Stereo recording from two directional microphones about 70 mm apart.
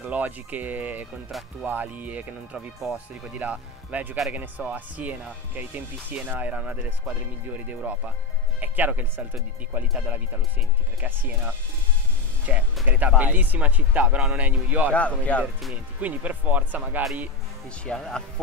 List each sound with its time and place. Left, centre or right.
0.0 s speech: right
12.5 s speech: right
14.9 s speech: centre
16.0 s speech: right
17.8 s speech: centre